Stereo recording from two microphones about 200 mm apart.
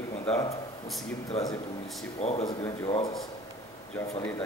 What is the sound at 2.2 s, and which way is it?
Speech, 35° left (ahead or behind).